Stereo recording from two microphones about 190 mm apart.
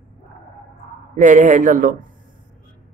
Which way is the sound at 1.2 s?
40° right (ahead or behind).